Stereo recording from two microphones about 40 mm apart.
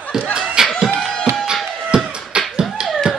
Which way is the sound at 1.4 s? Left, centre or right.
Right.